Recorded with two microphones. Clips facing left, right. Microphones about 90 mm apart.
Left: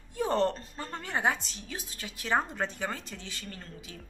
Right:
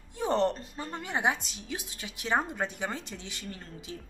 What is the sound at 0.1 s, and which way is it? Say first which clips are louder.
A woman's voice: even; 20° right (ahead or behind).